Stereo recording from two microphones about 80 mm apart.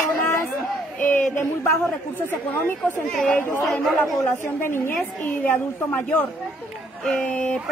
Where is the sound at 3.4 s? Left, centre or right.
Left.